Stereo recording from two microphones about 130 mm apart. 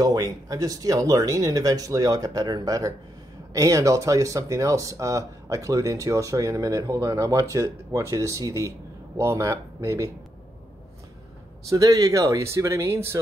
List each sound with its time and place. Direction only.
0.0 s speech: 25° right (ahead or behind)
11.7 s speech: 25° right (ahead or behind)